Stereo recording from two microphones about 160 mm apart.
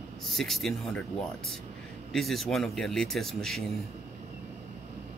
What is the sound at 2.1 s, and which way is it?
Speech, centre (ahead or behind).